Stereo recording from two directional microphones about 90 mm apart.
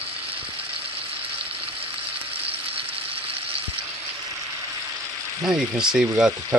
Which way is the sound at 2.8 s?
90° right.